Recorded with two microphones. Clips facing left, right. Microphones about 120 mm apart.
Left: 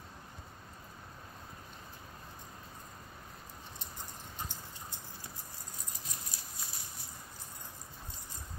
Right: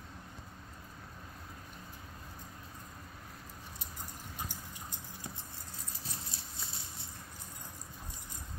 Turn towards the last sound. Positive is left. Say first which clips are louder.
# right 1 dB
turn(degrees=-25)  # may be behind; listen again after turning